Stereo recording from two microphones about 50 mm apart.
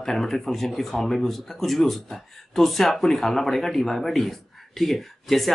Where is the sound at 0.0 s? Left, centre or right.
Centre.